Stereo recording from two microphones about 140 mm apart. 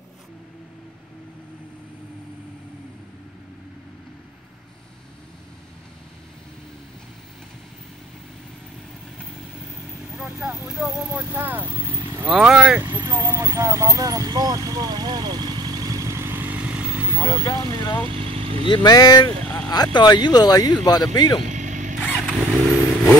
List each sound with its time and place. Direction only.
10.1 s vehicle: 5° right (ahead or behind)
10.7 s speech: 5° right (ahead or behind)
12.4 s speech: 5° right (ahead or behind)
12.8 s vehicle: 15° right (ahead or behind)
17.7 s speech: 20° left (ahead or behind)
18.0 s vehicle: 40° right (ahead or behind)
18.7 s speech: 30° left (ahead or behind)
19.4 s vehicle: 10° left (ahead or behind)
19.7 s speech: 30° left (ahead or behind)
21.4 s vehicle: 60° right (ahead or behind)
22.0 s vehicle: 10° right (ahead or behind)